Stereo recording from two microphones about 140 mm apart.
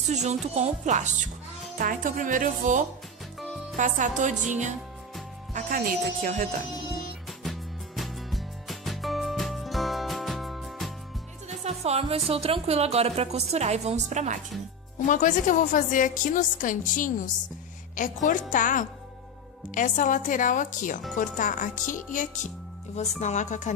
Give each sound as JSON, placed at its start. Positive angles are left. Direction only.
{"t": 0.1, "sound": "speech", "side_deg": -55}
{"t": 1.8, "sound": "speech", "side_deg": -70}
{"t": 5.5, "sound": "speech", "side_deg": -85}
{"t": 7.4, "sound": "music", "side_deg": 0}
{"t": 11.6, "sound": "music", "side_deg": -50}
{"t": 12.3, "sound": "a woman's voice", "side_deg": -45}
{"t": 15.0, "sound": "a woman's voice", "side_deg": 65}